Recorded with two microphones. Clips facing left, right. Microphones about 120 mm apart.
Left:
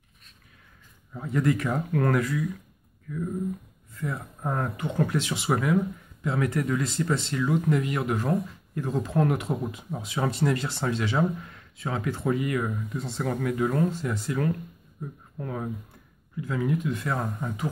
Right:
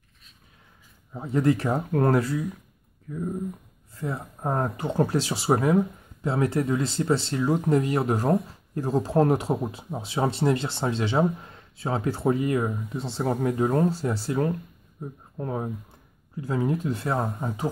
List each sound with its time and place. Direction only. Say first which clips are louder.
1.1 s speech: right 3 dB; 25° right (ahead or behind)